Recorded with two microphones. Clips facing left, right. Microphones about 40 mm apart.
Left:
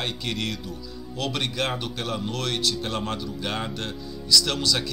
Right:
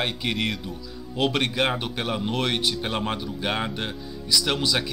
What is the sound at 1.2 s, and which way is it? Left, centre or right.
Speech, centre.